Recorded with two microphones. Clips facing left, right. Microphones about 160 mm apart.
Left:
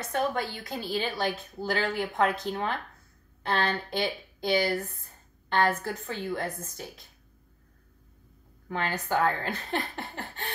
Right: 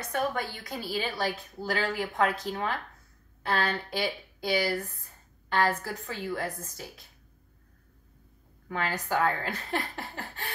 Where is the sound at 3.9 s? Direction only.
20° left (ahead or behind).